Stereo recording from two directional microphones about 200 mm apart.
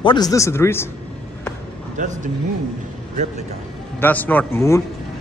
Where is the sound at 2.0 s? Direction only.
40° right (ahead or behind).